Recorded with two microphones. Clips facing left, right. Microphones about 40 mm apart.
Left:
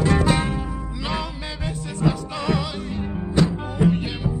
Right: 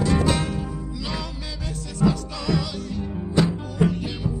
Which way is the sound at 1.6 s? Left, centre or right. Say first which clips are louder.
Right 1 dB; left.